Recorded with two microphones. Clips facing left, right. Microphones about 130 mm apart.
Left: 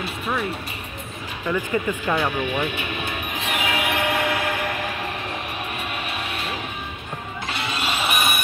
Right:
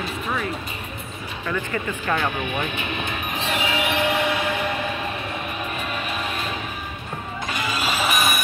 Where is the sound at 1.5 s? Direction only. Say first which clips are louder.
Left 4 dB; 15° left (ahead or behind).